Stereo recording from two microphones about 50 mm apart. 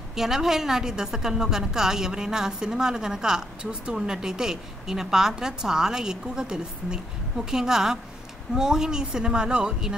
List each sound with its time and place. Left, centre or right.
0.1 s a woman's voice: centre